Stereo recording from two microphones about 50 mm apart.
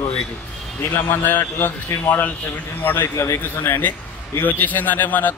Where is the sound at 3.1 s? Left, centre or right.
Left.